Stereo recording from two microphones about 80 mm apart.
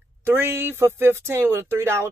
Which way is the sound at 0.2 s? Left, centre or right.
Right.